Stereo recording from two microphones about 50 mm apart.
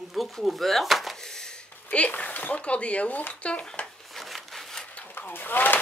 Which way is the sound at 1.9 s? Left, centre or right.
Left.